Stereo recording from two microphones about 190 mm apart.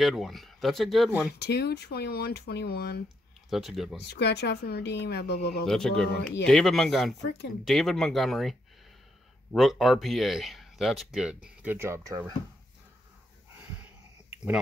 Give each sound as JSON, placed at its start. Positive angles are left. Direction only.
{"t": 0.0, "sound": "speech", "side_deg": 0}
{"t": 1.4, "sound": "speech", "side_deg": 60}
{"t": 3.4, "sound": "speech", "side_deg": 0}
{"t": 4.0, "sound": "speech", "side_deg": 60}
{"t": 5.7, "sound": "speech", "side_deg": 0}